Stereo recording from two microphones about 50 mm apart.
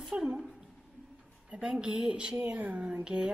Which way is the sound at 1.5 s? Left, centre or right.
Centre.